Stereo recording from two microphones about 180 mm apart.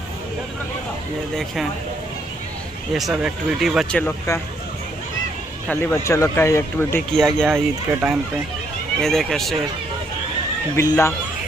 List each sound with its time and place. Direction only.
2.9 s speech: centre (ahead or behind)
5.7 s speech: 10° left (ahead or behind)
7.2 s speech: centre (ahead or behind)
10.8 s speech: 15° left (ahead or behind)